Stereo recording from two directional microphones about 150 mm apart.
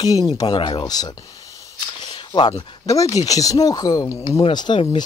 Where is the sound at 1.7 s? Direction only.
35° left (ahead or behind).